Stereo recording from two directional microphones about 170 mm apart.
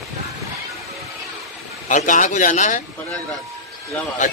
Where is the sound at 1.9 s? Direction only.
50° left (ahead or behind).